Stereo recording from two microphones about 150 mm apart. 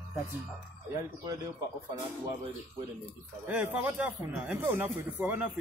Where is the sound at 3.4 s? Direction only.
10° right (ahead or behind).